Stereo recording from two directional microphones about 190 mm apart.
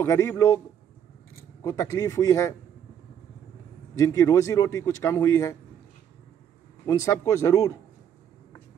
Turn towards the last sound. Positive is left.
turn(degrees=15)  # may be behind; listen again after turning